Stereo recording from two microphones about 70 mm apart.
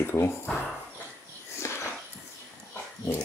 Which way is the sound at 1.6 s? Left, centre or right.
Left.